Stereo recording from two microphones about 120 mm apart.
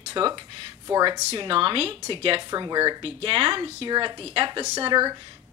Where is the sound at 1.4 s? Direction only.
45° right (ahead or behind).